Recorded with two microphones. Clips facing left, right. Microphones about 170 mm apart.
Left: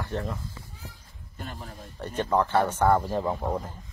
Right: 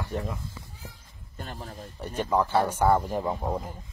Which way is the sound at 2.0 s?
10° right (ahead or behind).